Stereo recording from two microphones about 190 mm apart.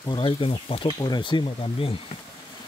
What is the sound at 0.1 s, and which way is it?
Speech, 25° left (ahead or behind).